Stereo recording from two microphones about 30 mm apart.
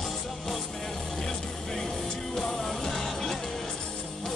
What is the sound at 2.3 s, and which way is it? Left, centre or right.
Music, centre.